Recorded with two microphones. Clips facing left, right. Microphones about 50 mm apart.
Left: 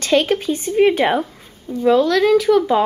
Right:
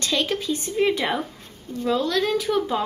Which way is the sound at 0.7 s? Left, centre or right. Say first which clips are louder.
Left 8 dB; left.